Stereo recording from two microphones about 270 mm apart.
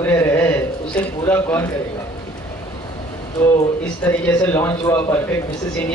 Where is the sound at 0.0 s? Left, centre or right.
Centre.